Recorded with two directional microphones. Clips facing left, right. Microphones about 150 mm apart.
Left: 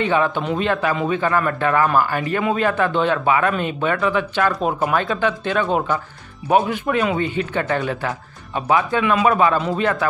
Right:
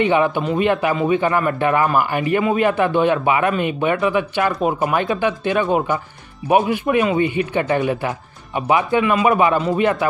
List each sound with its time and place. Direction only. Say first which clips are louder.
0.0 s speech: right 3 dB; 15° right (ahead or behind)